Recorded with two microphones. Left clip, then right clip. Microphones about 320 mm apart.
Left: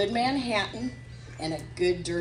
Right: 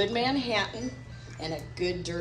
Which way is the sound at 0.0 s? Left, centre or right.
Left.